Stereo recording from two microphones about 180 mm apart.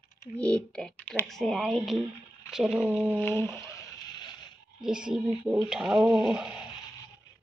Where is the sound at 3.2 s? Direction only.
10° left (ahead or behind).